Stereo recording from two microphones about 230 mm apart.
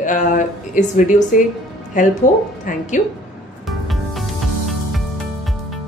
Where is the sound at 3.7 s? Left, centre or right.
Centre.